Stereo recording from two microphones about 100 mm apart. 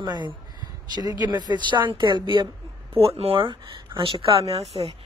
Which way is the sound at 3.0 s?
70° right (ahead or behind).